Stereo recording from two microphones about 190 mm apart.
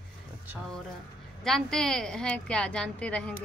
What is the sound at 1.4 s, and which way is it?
A woman's voice, centre (ahead or behind).